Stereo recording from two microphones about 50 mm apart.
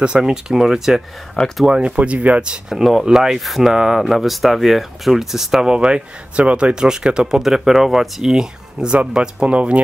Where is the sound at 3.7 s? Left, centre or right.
Centre.